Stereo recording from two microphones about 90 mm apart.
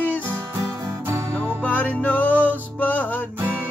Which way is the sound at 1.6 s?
15° left (ahead or behind).